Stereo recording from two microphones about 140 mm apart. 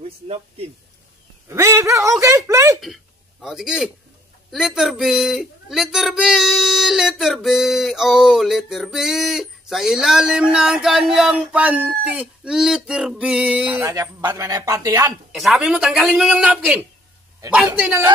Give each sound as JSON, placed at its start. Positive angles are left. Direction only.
{"t": 1.5, "sound": "speech", "side_deg": -20}
{"t": 2.8, "sound": "speech", "side_deg": 0}
{"t": 14.3, "sound": "speech", "side_deg": -25}
{"t": 15.3, "sound": "a man's voice", "side_deg": 0}